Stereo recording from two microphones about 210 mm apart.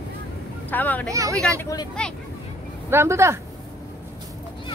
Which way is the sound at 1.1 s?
15° right (ahead or behind).